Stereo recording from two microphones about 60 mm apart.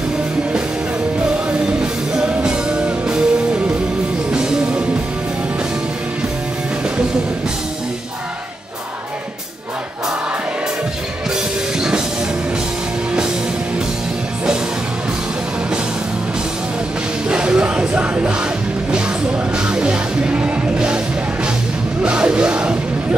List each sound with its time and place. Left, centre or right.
1.5 s music: centre
17.3 s music: centre
22.0 s music: centre